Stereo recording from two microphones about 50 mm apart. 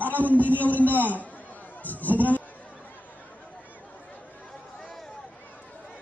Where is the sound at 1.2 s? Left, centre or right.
Left.